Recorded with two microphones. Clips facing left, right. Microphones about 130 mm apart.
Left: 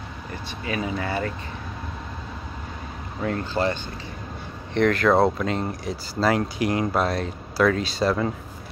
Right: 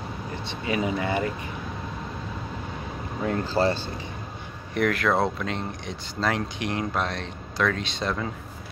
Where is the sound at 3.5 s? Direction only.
35° right (ahead or behind).